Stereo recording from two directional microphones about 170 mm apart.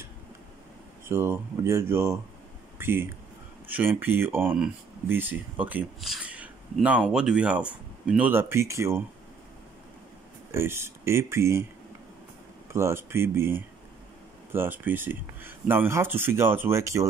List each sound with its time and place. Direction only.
1.0 s speech: 15° right (ahead or behind)
10.5 s speech: 15° right (ahead or behind)
12.7 s speech: 15° right (ahead or behind)